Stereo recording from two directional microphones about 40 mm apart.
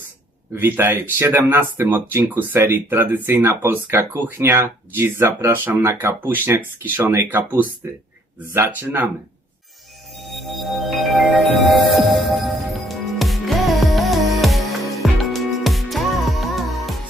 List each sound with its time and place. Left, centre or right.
0.6 s speech: right
2.2 s speech: right
4.1 s speech: right
5.8 s speech: right
6.4 s speech: right
7.2 s speech: right
8.5 s speech: right
10.2 s music: centre